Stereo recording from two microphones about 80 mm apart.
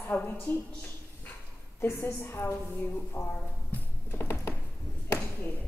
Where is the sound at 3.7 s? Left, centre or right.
Left.